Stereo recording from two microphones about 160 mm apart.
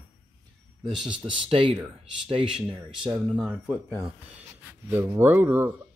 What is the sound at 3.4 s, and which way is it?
Speech, 5° right (ahead or behind).